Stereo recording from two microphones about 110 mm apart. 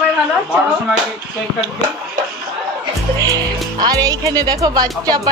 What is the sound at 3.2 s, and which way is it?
Speech, 35° right (ahead or behind).